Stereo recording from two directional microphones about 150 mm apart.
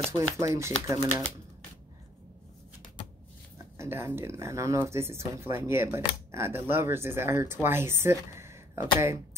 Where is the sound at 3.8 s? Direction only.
15° right (ahead or behind).